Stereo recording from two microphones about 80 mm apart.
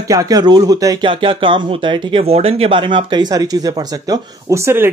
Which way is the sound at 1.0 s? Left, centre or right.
Right.